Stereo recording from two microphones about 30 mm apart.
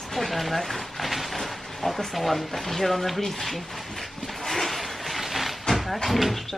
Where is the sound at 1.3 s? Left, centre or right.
Centre.